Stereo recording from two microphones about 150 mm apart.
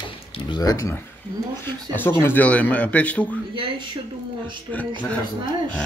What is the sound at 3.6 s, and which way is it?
Speech, 35° right (ahead or behind).